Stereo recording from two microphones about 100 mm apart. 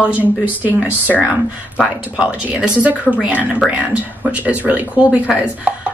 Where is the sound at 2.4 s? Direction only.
15° right (ahead or behind).